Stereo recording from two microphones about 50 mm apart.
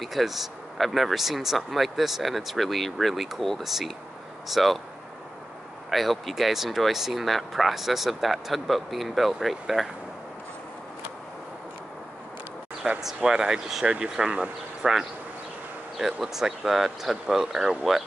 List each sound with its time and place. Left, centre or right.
0.0 s speech: centre
5.9 s speech: centre
12.8 s speech: right; by 18.0 s centre